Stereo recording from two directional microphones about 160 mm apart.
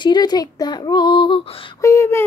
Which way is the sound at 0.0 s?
25° left (ahead or behind).